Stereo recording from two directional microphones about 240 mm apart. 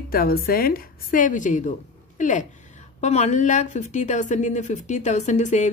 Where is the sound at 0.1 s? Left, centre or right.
Left.